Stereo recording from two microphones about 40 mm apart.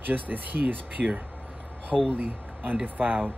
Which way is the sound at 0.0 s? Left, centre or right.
Right.